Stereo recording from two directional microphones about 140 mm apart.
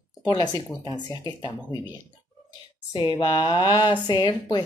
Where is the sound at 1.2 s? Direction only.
30° left (ahead or behind).